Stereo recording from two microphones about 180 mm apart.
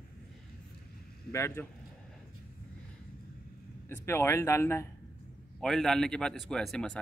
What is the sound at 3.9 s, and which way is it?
Speech, 15° left (ahead or behind).